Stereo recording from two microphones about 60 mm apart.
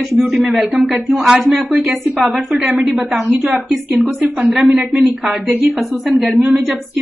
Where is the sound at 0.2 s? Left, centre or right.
Right.